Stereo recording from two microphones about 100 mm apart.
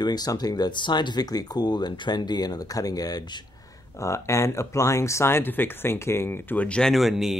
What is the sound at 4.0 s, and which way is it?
Speech, 30° left (ahead or behind).